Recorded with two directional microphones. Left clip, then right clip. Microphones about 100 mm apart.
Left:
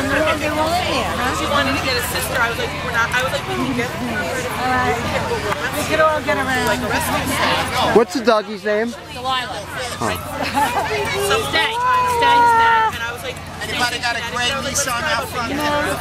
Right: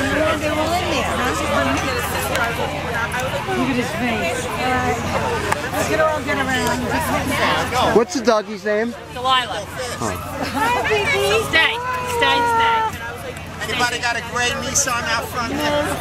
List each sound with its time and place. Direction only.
1.2 s speech: centre (ahead or behind)
5.8 s speech: centre (ahead or behind)
7.1 s a man's voice: 5° left (ahead or behind)
10.6 s speech: centre (ahead or behind)
14.9 s speech: centre (ahead or behind)
15.6 s speech: 35° left (ahead or behind)